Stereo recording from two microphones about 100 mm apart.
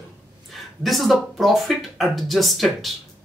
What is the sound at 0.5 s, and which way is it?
Speech, centre (ahead or behind).